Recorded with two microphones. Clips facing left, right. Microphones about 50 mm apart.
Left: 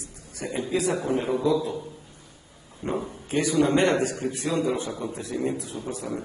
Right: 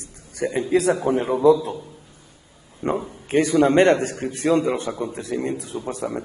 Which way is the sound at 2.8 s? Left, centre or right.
Right.